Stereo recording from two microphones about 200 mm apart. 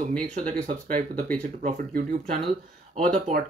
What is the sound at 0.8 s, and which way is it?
Speech, 40° right (ahead or behind).